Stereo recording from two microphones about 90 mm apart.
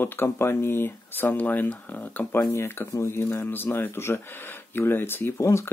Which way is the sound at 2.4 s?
30° left (ahead or behind).